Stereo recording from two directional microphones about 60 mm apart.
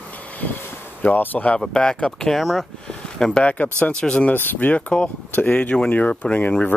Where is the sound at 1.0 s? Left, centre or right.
Left.